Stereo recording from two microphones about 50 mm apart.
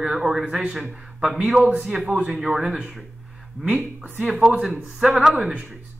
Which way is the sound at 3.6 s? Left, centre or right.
Right.